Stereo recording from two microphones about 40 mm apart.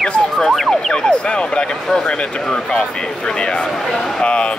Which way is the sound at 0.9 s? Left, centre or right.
Left.